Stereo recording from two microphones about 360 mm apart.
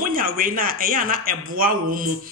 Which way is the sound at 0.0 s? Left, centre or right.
Right.